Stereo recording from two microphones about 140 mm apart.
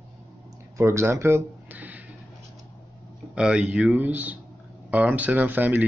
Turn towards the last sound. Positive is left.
turn(degrees=-10)  # may be behind; listen again after turning